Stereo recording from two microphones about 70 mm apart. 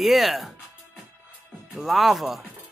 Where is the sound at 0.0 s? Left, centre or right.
Centre.